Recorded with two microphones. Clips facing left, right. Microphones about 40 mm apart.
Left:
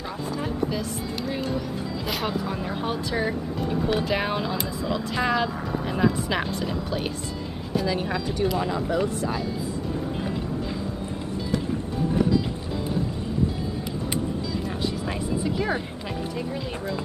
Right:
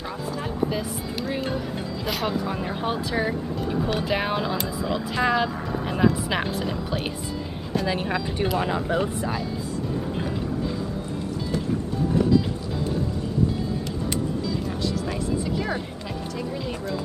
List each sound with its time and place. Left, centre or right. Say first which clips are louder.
2.0 s speech: right 2 dB; centre
7.8 s speech: right 1 dB; right
12.2 s music: right 1 dB; centre
15.4 s speech: left 1 dB; centre